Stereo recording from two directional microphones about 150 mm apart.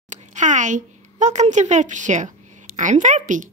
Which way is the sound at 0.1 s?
55° right (ahead or behind).